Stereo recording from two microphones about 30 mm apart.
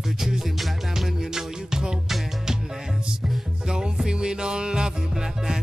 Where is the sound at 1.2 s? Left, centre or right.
Right.